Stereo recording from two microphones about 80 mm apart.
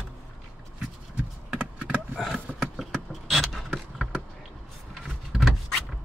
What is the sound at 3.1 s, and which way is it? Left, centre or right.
Vehicle, centre.